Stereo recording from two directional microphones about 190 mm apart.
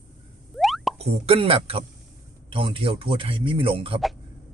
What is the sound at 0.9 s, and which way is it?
A man's voice, 30° right (ahead or behind).